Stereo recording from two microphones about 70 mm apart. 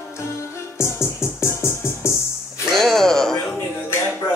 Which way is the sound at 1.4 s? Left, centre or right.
Left.